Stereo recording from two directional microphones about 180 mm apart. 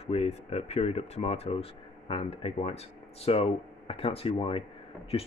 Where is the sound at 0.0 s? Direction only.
35° left (ahead or behind).